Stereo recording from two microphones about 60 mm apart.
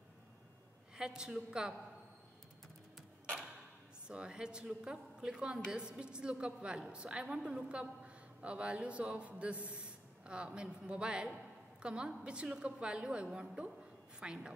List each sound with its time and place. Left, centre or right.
0.9 s a woman's voice: centre
4.1 s a woman's voice: centre